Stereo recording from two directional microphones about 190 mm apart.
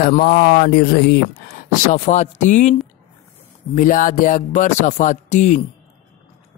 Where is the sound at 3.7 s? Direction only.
45° left (ahead or behind).